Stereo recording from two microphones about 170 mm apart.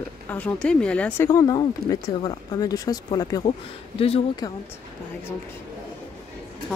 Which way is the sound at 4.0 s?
35° left (ahead or behind).